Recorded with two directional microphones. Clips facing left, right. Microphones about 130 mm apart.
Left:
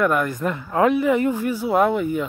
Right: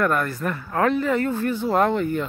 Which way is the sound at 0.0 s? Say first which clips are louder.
Left 2 dB; 15° left (ahead or behind).